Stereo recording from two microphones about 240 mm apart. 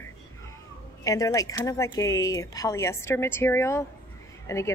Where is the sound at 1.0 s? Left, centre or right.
Centre.